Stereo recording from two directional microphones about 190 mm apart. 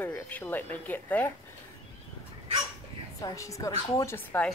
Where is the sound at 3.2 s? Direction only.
15° left (ahead or behind).